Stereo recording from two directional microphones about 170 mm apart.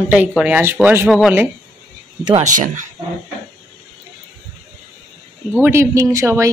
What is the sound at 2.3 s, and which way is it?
Speech, 45° right (ahead or behind).